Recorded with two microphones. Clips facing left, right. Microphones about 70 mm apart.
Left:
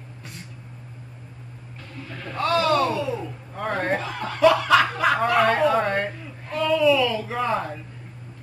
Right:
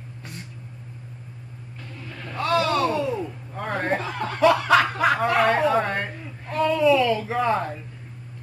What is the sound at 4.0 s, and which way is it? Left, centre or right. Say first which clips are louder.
Snicker: left 3 dB; right.